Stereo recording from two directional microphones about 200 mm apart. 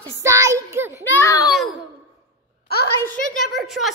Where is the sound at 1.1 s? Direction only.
15° left (ahead or behind).